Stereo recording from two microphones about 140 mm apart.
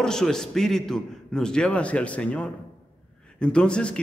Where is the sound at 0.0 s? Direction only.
5° left (ahead or behind).